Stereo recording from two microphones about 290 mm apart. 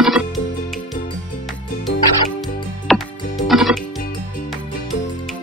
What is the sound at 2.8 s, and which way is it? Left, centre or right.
Music, centre.